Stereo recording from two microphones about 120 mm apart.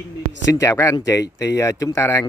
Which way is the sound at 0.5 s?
25° left (ahead or behind).